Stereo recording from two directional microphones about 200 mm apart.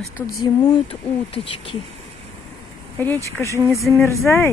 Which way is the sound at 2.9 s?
10° left (ahead or behind).